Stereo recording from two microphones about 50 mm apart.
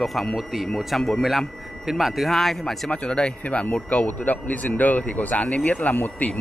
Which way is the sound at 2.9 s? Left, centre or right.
Centre.